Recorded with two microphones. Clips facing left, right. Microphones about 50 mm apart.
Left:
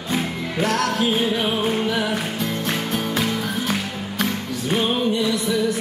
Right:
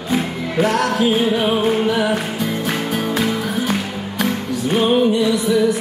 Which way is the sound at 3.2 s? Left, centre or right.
Centre.